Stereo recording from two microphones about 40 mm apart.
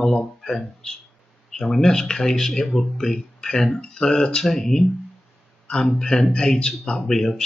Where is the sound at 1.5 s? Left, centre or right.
Centre.